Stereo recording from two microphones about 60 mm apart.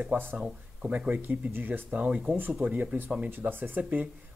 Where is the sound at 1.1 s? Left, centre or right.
Right.